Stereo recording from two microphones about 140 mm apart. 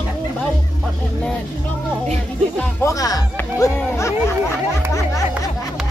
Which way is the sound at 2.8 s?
25° left (ahead or behind).